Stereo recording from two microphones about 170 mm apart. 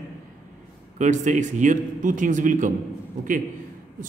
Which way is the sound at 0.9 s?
45° right (ahead or behind).